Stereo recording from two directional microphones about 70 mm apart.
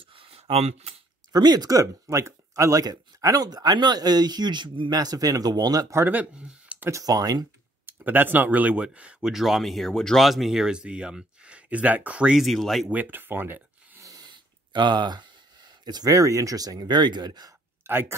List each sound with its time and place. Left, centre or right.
1.3 s speech: right
6.0 s speech: centre
6.9 s speech: right
7.8 s speech: right
9.3 s speech: centre
12.4 s speech: centre
12.9 s speech: right
14.0 s a sound: right
16.1 s speech: right
17.8 s speech: right